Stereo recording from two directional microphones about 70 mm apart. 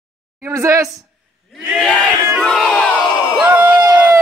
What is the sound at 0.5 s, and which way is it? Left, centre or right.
Speech, right.